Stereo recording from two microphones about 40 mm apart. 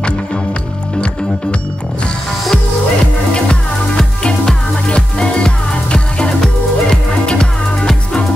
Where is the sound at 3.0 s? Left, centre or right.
Centre.